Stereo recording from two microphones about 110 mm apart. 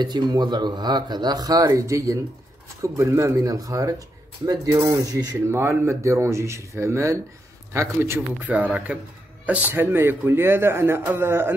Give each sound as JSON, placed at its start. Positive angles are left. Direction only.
{"t": 0.0, "sound": "speech", "side_deg": -40}